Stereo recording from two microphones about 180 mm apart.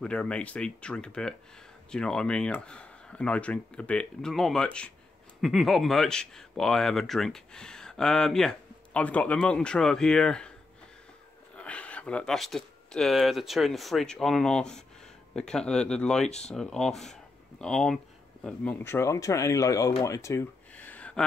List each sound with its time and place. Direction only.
0.0 s speech: 5° left (ahead or behind)
11.5 s speech: 5° left (ahead or behind)
16.3 s speech: 40° left (ahead or behind)
16.5 s speech: 5° left (ahead or behind)
20.0 s a sound: 15° left (ahead or behind)